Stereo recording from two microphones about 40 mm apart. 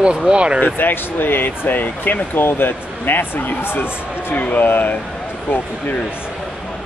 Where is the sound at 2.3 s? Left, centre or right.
Left.